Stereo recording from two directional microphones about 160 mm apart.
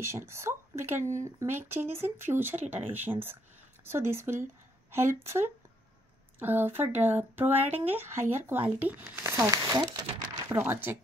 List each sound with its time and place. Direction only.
0.0 s speech: 15° right (ahead or behind)
6.4 s speech: 10° right (ahead or behind)
9.3 s speech: 20° right (ahead or behind)
10.5 s speech: 15° right (ahead or behind)